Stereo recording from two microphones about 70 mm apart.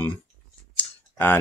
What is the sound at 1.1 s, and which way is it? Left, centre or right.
Tick-tock, left.